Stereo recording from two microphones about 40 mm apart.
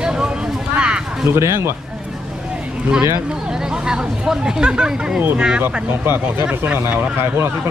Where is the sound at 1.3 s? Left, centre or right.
Right.